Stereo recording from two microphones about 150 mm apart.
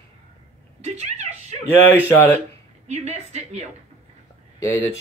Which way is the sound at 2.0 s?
15° left (ahead or behind).